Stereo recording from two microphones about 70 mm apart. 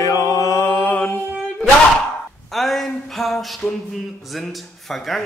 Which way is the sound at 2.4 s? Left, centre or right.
Centre.